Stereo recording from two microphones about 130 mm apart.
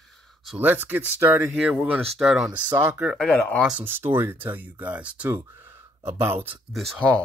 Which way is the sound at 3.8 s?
15° right (ahead or behind).